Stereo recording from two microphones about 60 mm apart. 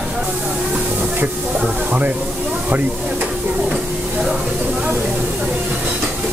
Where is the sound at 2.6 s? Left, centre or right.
Right.